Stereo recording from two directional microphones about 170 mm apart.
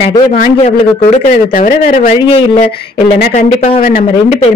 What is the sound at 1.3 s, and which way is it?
Speech, 55° left (ahead or behind).